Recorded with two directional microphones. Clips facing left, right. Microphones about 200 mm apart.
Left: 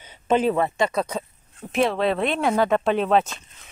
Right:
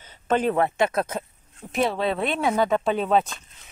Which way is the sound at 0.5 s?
5° right (ahead or behind).